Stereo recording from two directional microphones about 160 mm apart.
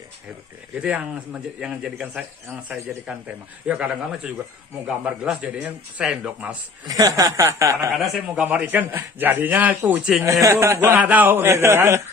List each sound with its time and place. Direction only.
0.7 s a man's voice: 5° right (ahead or behind)
6.9 s speech: 20° right (ahead or behind)
7.9 s a man's voice: centre (ahead or behind)
10.2 s a man's voice: 20° right (ahead or behind)